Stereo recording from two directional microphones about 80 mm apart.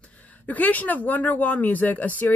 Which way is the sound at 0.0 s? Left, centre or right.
Centre.